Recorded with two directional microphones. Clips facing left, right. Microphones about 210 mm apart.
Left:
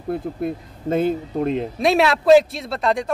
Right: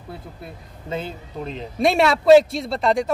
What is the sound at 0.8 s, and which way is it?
Speech, 50° left (ahead or behind).